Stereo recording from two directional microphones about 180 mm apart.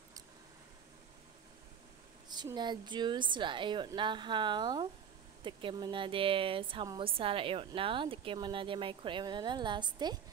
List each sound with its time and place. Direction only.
2.2 s speech: 25° right (ahead or behind)